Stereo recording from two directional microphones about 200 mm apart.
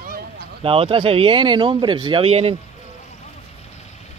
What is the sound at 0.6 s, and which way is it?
Speech, 30° right (ahead or behind).